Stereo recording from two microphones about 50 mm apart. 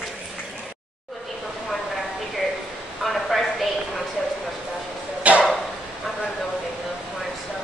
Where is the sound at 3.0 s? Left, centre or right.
Centre.